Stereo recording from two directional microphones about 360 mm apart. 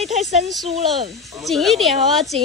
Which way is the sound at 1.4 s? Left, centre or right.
Centre.